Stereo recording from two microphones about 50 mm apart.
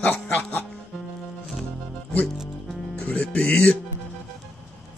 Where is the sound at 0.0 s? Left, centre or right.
Left.